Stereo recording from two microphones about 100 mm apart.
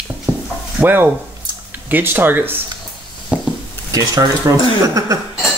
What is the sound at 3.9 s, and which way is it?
Speech, 35° right (ahead or behind).